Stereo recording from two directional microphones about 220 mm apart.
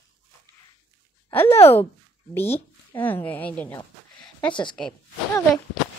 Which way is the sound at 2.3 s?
10° left (ahead or behind).